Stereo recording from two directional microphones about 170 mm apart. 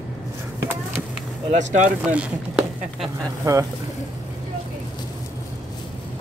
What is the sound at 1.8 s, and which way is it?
Speech, 5° right (ahead or behind).